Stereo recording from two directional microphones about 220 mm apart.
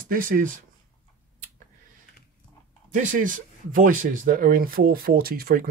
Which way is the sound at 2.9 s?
35° right (ahead or behind).